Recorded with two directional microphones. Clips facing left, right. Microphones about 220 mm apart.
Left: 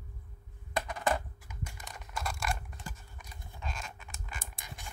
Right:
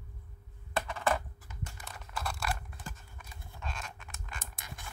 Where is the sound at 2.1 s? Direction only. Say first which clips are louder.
Even; 5° right (ahead or behind).